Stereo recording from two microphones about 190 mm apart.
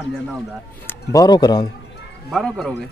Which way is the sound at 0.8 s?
20° left (ahead or behind).